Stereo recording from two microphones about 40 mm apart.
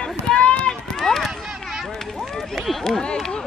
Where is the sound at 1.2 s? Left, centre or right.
Centre.